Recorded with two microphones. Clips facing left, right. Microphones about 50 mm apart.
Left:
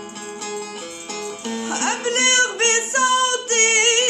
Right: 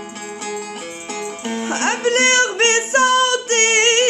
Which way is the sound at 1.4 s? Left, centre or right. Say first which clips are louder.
Right 3 dB; right.